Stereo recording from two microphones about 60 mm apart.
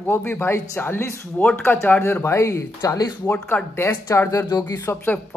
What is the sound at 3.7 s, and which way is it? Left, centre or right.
Speech, left.